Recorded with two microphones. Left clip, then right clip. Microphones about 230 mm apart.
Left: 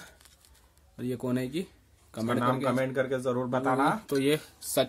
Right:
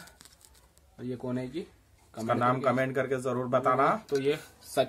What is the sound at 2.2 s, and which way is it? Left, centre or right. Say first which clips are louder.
A man's voice: right 2 dB; centre.